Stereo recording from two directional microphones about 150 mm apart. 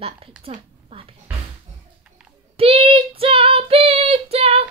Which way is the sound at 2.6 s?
40° right (ahead or behind).